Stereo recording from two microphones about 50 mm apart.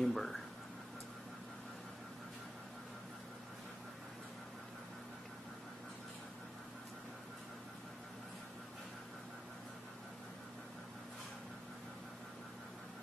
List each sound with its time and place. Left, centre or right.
0.0 s speech: centre